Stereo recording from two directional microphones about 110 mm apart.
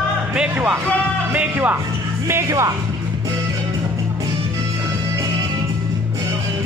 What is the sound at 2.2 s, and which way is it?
Speech, 25° right (ahead or behind).